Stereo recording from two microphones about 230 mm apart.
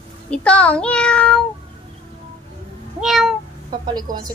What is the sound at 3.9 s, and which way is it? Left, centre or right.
Speech, centre.